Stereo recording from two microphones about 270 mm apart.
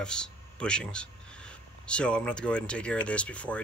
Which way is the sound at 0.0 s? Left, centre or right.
Centre.